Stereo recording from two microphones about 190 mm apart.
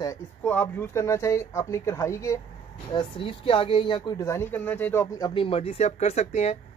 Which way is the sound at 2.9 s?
25° left (ahead or behind).